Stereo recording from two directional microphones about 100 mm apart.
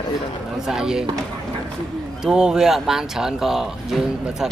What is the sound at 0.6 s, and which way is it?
Speech, 5° right (ahead or behind).